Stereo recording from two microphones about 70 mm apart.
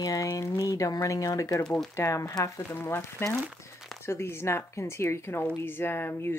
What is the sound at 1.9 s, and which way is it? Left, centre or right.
Speech, left.